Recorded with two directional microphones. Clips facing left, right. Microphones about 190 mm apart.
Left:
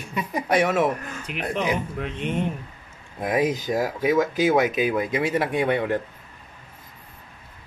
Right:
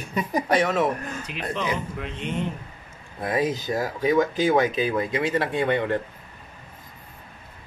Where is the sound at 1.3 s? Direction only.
60° left (ahead or behind).